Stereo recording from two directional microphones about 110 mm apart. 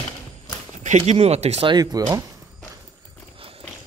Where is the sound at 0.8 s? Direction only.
85° right.